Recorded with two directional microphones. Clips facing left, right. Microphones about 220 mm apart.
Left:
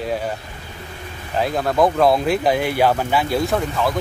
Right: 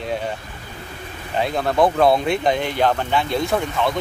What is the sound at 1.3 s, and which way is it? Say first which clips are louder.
Speech: left 1 dB; centre (ahead or behind).